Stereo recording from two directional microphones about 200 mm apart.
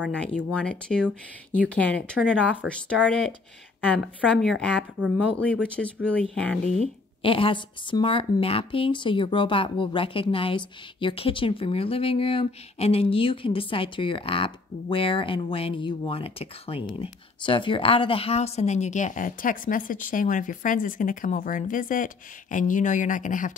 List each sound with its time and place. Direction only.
0.1 s a woman's voice: 5° left (ahead or behind)
6.3 s a woman's voice: 5° left (ahead or behind)
6.7 s a woman's voice: 30° left (ahead or behind)